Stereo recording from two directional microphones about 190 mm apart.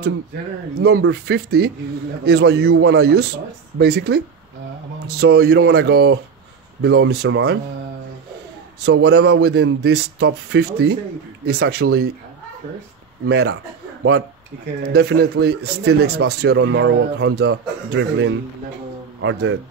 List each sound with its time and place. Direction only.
0.7 s speech: 55° right (ahead or behind)
5.2 s speech: 55° right (ahead or behind)
8.8 s speech: 60° right (ahead or behind)
13.3 s speech: 65° right (ahead or behind)
14.8 s speech: 60° right (ahead or behind)
19.2 s speech: 90° right